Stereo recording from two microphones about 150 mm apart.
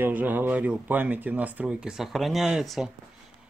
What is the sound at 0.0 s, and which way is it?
Speech, 10° right (ahead or behind).